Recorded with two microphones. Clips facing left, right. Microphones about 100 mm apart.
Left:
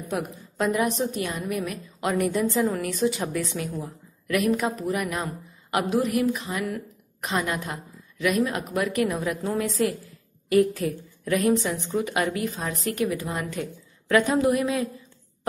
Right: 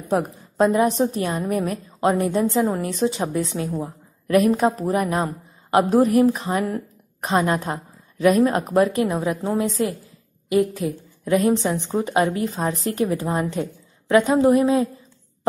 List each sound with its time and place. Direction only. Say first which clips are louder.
0.1 s a woman's voice: right 8 dB; 30° right (ahead or behind)
1.2 s a woman's voice: right 6 dB; 45° right (ahead or behind)
13.6 s a woman's voice: right 5 dB; 20° right (ahead or behind)